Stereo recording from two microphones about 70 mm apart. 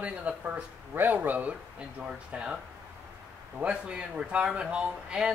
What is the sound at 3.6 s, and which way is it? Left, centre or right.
Speech, centre.